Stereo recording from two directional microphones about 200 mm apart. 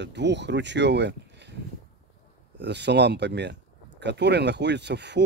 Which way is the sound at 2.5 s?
60° right (ahead or behind).